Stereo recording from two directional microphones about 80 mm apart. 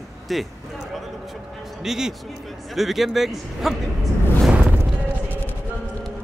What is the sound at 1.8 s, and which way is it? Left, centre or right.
Speech, centre.